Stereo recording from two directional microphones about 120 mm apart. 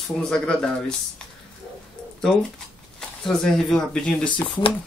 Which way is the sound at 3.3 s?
5° left (ahead or behind).